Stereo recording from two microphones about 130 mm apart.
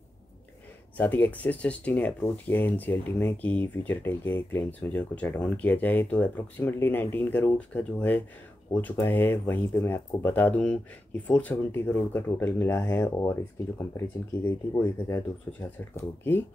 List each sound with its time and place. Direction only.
0.9 s speech: 15° left (ahead or behind)